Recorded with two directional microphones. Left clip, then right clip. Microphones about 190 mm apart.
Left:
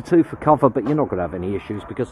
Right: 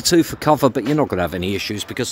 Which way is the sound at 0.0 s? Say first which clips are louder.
Right 1 dB; 15° right (ahead or behind).